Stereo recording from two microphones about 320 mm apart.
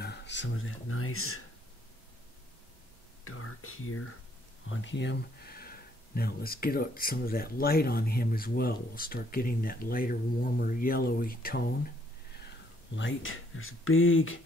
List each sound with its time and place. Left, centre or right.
0.0 s speech: left
3.3 s speech: left
12.9 s speech: left